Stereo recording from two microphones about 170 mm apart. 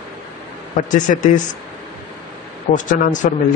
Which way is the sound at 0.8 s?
50° left (ahead or behind).